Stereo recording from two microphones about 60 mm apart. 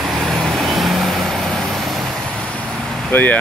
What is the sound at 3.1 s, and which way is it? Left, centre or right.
Speech, left.